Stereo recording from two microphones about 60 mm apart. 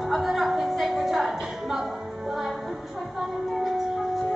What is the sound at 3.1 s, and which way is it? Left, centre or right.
Music, centre.